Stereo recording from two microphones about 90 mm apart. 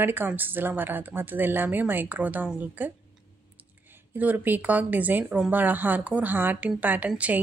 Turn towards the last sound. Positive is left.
turn(degrees=-20)  # may be behind; listen again after turning